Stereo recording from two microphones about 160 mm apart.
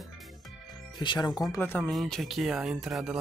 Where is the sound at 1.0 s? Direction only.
25° left (ahead or behind); by 3.1 s 5° right (ahead or behind).